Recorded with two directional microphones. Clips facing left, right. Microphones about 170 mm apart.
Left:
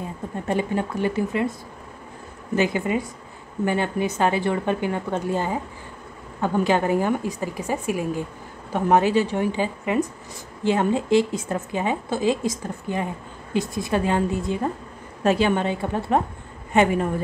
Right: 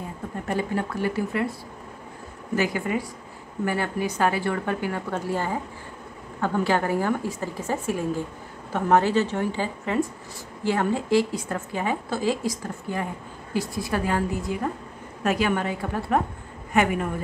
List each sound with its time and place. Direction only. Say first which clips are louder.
0.5 s a woman's voice: left 3 dB; 20° left (ahead or behind)
2.5 s a woman's voice: left 3 dB; 20° left (ahead or behind)